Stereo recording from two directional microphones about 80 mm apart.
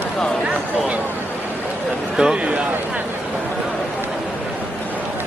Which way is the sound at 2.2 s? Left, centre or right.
Centre.